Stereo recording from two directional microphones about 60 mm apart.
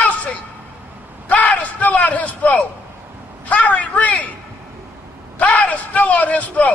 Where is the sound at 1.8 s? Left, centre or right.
Left.